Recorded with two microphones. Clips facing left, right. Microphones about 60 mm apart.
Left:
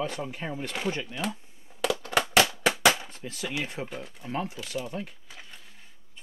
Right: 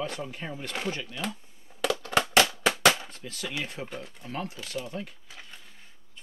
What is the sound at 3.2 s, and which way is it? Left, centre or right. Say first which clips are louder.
Speech: left 2 dB; centre.